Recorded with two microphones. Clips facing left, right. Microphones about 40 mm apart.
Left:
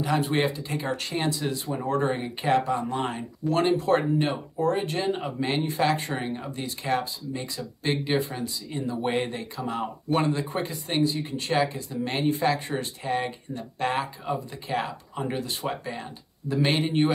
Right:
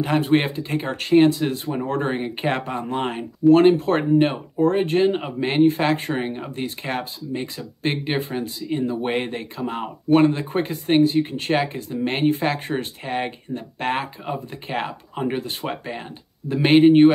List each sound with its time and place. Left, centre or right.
0.0 s speech: right
10.4 s speech: right